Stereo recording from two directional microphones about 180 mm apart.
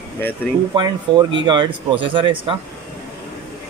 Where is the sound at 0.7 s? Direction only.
25° right (ahead or behind).